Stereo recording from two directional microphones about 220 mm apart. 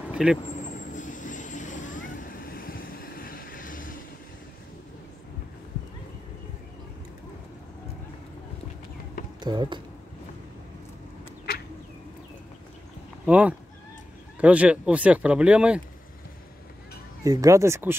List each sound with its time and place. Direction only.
0.1 s vehicle: 5° right (ahead or behind)
0.7 s vehicle: 35° left (ahead or behind)
9.4 s speech: 20° right (ahead or behind)
13.2 s speech: 5° right (ahead or behind)
17.2 s speech: 15° right (ahead or behind)